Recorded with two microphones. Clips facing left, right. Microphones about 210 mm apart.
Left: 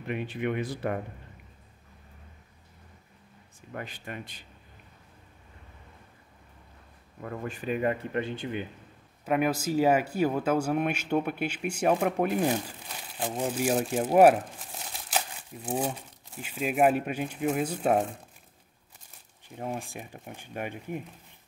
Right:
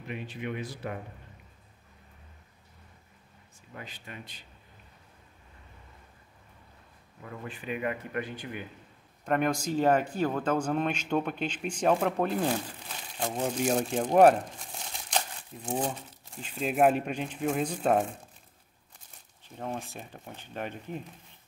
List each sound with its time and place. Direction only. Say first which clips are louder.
0.0 s speech: left 6 dB; 60° left (ahead or behind)
3.7 s speech: left 6 dB; 55° left (ahead or behind)
7.2 s speech: left 5 dB; 50° left (ahead or behind); by 8.6 s 25° left (ahead or behind)
9.2 s speech: left 1 dB; 5° left (ahead or behind)
19.4 s speech: left 1 dB; 10° left (ahead or behind)